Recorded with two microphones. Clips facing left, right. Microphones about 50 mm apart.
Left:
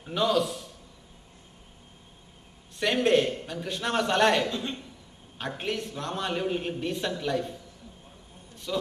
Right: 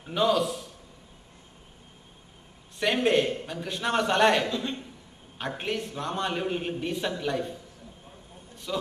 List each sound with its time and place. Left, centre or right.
0.0 s a man's voice: centre
2.8 s a man's voice: centre
4.6 s a man's voice: right
5.6 s a man's voice: centre
8.7 s a man's voice: centre